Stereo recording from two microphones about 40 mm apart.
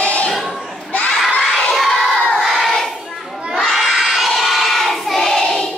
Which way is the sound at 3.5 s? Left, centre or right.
Centre.